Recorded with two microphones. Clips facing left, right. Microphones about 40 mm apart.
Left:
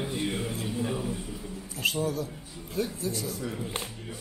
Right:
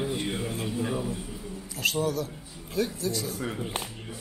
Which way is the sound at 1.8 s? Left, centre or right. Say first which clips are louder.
Right 1 dB; right.